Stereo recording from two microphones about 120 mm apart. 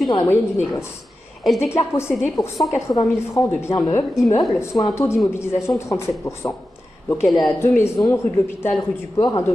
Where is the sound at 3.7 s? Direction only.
35° left (ahead or behind).